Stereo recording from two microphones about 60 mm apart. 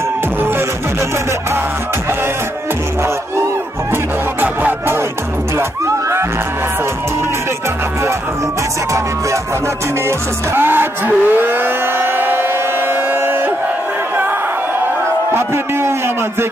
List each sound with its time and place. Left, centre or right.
3.9 s music: right
5.6 s music: right
10.0 s vehicle: right
15.3 s a sound: right